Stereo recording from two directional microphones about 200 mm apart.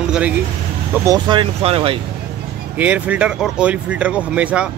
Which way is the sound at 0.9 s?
20° right (ahead or behind).